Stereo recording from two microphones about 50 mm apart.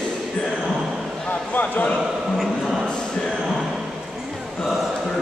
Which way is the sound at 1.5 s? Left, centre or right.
Left.